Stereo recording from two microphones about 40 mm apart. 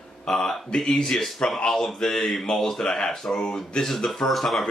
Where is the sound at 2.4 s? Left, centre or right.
Centre.